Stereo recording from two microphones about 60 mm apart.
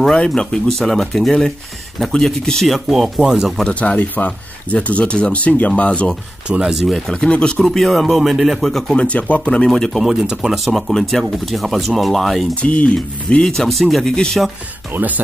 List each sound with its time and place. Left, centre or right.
0.0 s speech: centre
3.6 s speech: left
6.5 s speech: centre
7.1 s speech: centre
7.6 s speech: centre
8.9 s speech: left
10.0 s speech: centre
10.9 s speech: centre
12.6 s speech: left
12.9 s speech: centre
14.9 s speech: right